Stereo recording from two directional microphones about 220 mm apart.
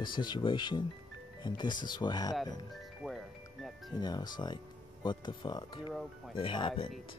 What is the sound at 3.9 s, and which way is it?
Speech, 20° left (ahead or behind).